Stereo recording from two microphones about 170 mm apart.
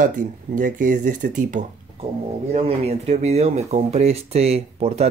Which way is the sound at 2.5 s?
35° right (ahead or behind).